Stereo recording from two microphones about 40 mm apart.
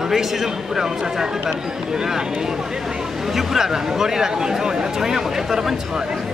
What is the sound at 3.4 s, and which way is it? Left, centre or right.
A man's voice, centre.